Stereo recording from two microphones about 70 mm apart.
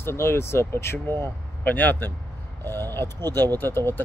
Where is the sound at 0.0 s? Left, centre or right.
Left.